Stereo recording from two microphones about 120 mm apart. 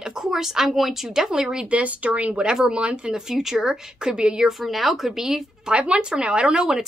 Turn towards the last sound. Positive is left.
turn(degrees=-5)  # may be behind; listen again after turning